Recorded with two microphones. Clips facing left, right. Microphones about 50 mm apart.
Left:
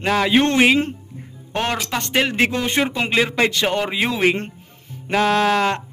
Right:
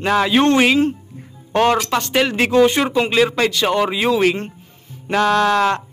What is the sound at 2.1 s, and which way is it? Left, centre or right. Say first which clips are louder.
Speech: right 4 dB; centre.